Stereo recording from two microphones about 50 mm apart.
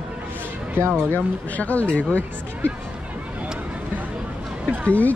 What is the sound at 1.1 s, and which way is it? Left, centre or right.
Speech, left.